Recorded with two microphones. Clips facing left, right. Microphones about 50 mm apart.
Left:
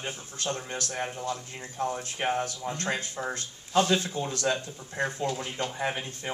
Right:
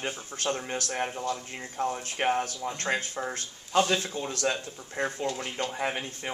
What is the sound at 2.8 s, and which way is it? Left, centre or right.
Speech, right.